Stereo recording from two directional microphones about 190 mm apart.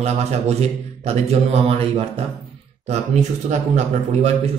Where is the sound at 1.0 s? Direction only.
35° right (ahead or behind).